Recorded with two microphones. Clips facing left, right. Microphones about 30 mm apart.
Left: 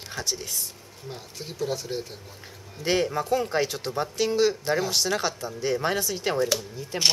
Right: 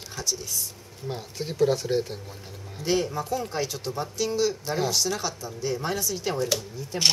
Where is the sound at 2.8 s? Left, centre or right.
Left.